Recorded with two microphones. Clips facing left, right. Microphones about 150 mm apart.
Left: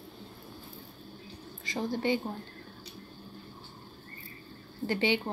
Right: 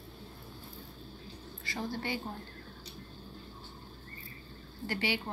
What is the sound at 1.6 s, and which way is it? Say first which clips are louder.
Speech: left 7 dB; 20° left (ahead or behind).